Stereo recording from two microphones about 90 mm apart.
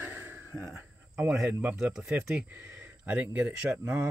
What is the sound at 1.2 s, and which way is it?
Speech, 10° right (ahead or behind).